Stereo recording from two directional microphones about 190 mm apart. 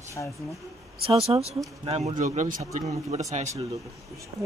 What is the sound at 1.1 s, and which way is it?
A man's voice, 30° right (ahead or behind).